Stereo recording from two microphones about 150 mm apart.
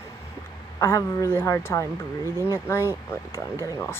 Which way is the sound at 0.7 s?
20° left (ahead or behind).